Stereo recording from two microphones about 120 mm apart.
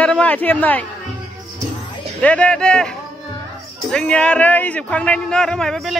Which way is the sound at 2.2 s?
10° left (ahead or behind).